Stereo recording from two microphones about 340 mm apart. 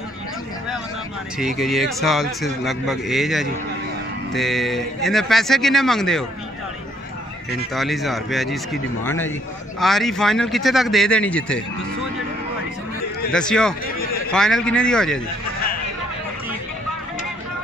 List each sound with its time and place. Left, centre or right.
1.4 s a man's voice: centre
7.7 s a man's voice: centre
13.3 s a man's voice: centre
13.9 s a sound: left
14.3 s a man's voice: centre